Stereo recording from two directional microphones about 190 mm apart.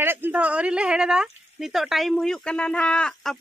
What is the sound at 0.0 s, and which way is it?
Speech, 10° right (ahead or behind).